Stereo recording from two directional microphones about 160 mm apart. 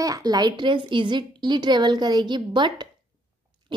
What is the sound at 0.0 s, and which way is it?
A woman's voice, 25° right (ahead or behind).